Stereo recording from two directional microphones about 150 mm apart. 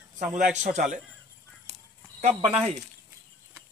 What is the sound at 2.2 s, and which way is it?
Speech, 50° right (ahead or behind).